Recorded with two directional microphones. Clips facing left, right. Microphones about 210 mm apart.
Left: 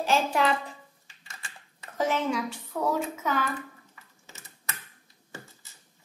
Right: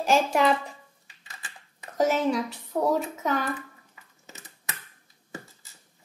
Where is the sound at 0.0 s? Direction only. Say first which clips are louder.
Right 3 dB; 45° right (ahead or behind).